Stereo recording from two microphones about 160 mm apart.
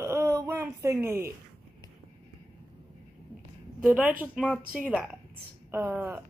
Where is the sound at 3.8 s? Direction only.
10° right (ahead or behind).